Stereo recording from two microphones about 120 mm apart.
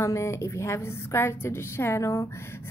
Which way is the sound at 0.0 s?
25° left (ahead or behind).